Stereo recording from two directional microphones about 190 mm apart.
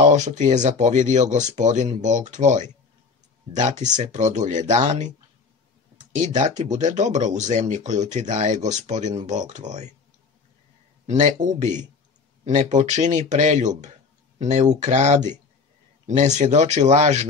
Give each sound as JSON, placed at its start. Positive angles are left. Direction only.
{"t": 0.0, "sound": "speech", "side_deg": -40}
{"t": 6.1, "sound": "speech", "side_deg": -40}
{"t": 11.1, "sound": "speech", "side_deg": -35}
{"t": 16.5, "sound": "speech", "side_deg": -40}